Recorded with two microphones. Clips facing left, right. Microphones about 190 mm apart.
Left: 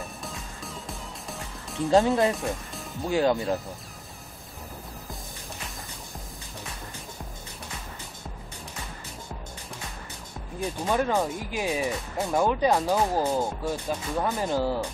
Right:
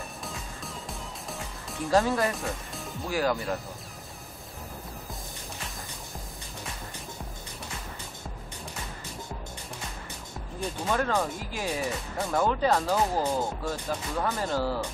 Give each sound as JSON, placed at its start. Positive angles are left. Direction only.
{"t": 0.2, "sound": "music", "side_deg": 0}
{"t": 1.9, "sound": "speech", "side_deg": 20}
{"t": 2.3, "sound": "speech", "side_deg": 0}
{"t": 3.1, "sound": "speech", "side_deg": 25}
{"t": 10.6, "sound": "speech", "side_deg": 15}